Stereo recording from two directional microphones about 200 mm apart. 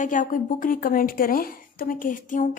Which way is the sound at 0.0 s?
40° left (ahead or behind).